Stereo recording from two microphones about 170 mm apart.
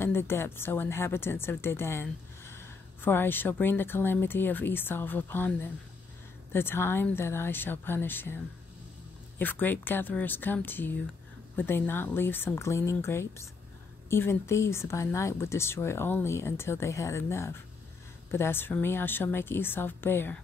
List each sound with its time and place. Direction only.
0.0 s a woman's voice: 15° left (ahead or behind)
9.4 s a woman's voice: 10° left (ahead or behind)